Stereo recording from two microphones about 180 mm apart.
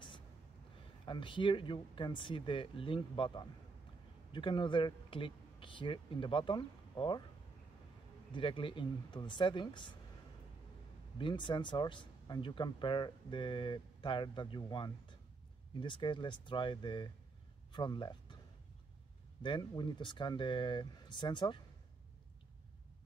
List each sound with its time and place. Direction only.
1.0 s speech: 25° left (ahead or behind)
8.3 s speech: 30° left (ahead or behind)
11.1 s speech: 25° left (ahead or behind)
19.4 s speech: 25° left (ahead or behind)